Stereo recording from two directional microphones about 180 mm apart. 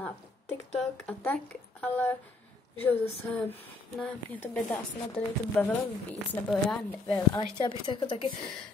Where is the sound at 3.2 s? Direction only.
10° left (ahead or behind).